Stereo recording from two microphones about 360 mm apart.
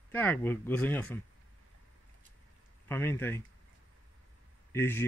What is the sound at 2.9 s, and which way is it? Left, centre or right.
Speech, centre.